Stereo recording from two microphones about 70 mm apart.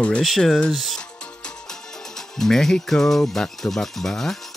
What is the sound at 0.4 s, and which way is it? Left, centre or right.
Speech, centre.